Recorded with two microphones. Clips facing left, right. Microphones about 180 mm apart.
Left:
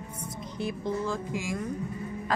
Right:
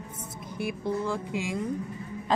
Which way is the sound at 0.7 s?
15° right (ahead or behind).